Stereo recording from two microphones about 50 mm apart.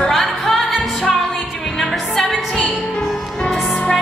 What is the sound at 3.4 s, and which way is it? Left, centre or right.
Music, centre.